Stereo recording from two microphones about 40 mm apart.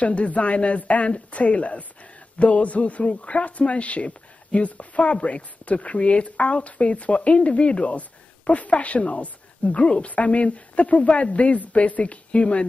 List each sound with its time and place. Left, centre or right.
0.0 s speech: left